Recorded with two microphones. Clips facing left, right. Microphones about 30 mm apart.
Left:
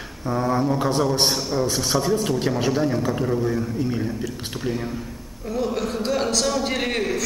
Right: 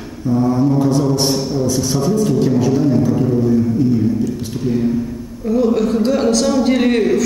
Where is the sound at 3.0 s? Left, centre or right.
Left.